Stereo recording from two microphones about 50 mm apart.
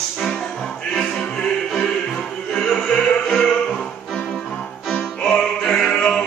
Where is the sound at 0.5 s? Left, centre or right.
Centre.